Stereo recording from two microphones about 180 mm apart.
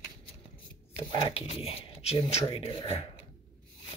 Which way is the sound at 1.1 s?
30° left (ahead or behind).